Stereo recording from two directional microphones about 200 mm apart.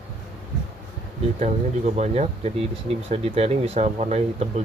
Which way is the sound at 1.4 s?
35° right (ahead or behind).